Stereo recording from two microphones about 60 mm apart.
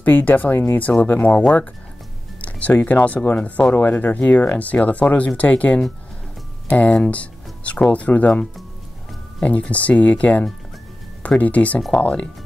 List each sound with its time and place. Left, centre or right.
0.0 s speech: left
2.4 s speech: left
9.4 s speech: left